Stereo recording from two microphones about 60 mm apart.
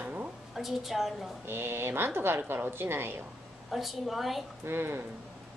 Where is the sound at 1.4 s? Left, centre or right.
Right.